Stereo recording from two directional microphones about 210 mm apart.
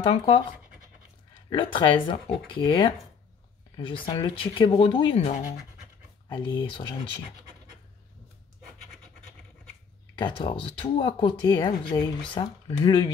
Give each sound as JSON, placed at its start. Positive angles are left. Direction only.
{"t": 0.0, "sound": "speech", "side_deg": 25}
{"t": 6.2, "sound": "speech", "side_deg": 20}
{"t": 10.1, "sound": "speech", "side_deg": 25}